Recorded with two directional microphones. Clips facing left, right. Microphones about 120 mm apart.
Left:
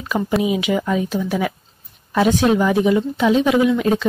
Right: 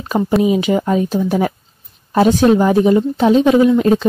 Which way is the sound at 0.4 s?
40° right (ahead or behind).